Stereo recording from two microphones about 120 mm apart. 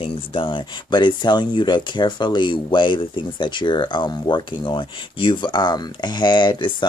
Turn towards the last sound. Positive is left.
turn(degrees=40)  # may be behind; listen again after turning